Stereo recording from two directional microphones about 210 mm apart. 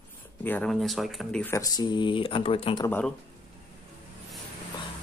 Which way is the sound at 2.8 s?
10° left (ahead or behind).